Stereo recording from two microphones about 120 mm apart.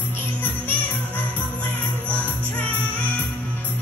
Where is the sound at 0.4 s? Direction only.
15° left (ahead or behind).